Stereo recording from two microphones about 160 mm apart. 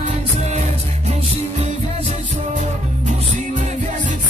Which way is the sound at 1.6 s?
40° right (ahead or behind).